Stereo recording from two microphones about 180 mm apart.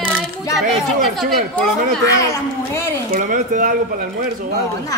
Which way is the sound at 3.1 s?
50° right (ahead or behind).